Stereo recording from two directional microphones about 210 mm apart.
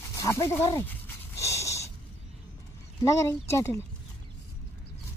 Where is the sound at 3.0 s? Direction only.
15° left (ahead or behind).